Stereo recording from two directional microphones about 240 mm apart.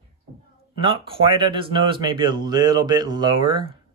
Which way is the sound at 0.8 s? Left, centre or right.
Right.